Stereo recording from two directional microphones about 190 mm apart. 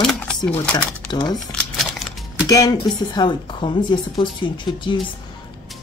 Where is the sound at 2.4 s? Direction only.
20° left (ahead or behind).